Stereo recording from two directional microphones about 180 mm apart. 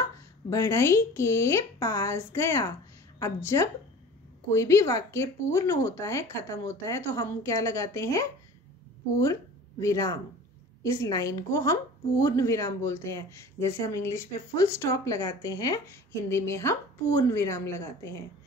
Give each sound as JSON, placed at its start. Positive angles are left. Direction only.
{"t": 0.5, "sound": "speech", "side_deg": 15}